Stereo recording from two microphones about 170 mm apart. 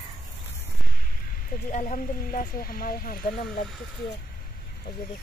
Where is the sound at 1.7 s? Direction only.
50° left (ahead or behind).